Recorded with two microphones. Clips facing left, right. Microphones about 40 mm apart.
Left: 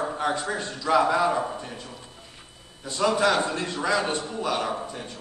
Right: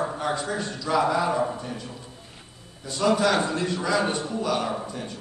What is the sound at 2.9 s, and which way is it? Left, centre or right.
A man's voice, left.